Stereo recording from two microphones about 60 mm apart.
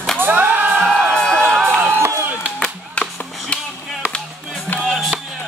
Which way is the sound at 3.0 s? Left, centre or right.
Left.